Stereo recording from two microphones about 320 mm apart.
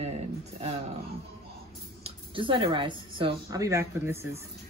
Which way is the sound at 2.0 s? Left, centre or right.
Centre.